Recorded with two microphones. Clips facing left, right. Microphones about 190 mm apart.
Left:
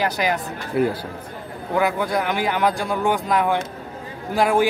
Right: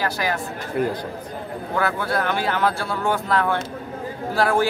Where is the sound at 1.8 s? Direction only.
15° left (ahead or behind).